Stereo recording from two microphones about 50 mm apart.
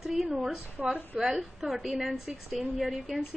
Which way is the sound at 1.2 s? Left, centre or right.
Centre.